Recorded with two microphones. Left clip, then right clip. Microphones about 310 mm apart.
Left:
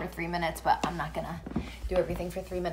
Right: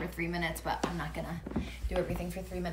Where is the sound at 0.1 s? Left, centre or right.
Centre.